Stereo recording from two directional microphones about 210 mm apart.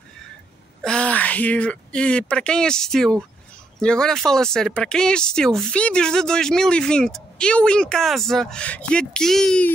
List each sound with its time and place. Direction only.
0.8 s speech: 5° left (ahead or behind)